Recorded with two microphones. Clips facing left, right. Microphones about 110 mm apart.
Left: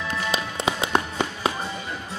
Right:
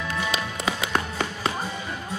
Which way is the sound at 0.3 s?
25° left (ahead or behind).